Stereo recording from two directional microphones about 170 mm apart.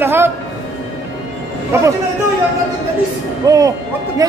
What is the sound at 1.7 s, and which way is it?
Speech, 15° right (ahead or behind).